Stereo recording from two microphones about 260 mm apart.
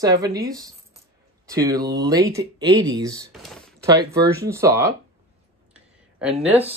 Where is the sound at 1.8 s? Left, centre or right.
Right.